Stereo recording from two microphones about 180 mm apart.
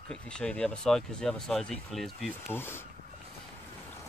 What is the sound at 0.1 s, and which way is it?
Speech, 5° left (ahead or behind).